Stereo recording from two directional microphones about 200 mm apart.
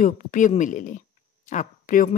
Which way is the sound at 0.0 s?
40° left (ahead or behind).